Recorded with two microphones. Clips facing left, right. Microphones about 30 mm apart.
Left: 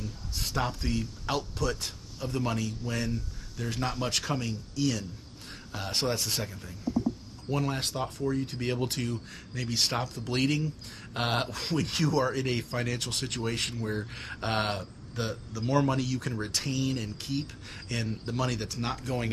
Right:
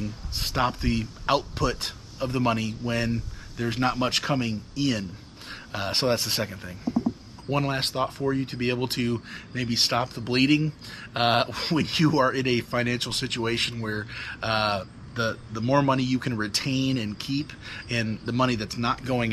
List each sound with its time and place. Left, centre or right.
0.0 s speech: right
13.8 s speech: right